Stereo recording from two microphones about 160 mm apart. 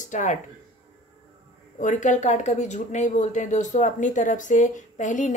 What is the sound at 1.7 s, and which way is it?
Speech, 50° left (ahead or behind).